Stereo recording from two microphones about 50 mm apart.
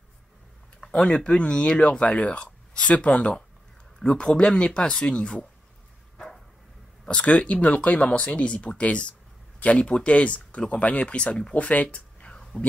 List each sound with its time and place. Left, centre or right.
0.9 s speech: centre
7.1 s speech: left